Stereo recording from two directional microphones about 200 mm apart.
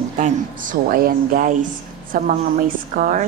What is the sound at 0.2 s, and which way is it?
A woman's voice, 40° right (ahead or behind).